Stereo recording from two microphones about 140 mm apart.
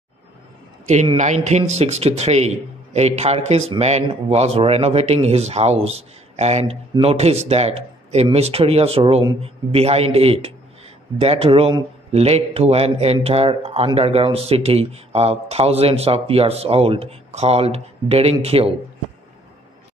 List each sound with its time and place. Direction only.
1.1 s a man's voice: 60° right (ahead or behind)